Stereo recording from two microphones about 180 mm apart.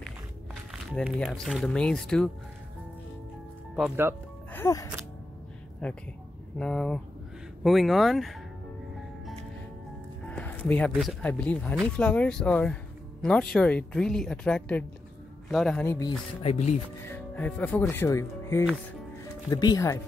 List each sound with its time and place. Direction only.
0.7 s a woman's voice: centre (ahead or behind)
3.7 s speech: 5° right (ahead or behind)
4.5 s music: 15° left (ahead or behind)
5.8 s a woman's voice: 5° left (ahead or behind)
10.2 s a woman's voice: 10° left (ahead or behind)
16.4 s speech: 40° left (ahead or behind)
17.0 s speech: 10° left (ahead or behind)